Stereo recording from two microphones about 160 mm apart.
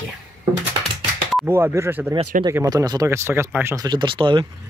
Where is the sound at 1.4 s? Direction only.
15° right (ahead or behind).